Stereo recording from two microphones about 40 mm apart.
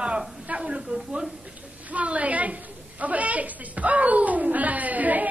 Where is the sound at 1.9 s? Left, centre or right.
Right.